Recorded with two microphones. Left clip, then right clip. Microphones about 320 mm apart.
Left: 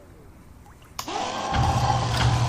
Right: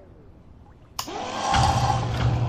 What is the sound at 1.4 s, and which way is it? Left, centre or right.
Music, centre.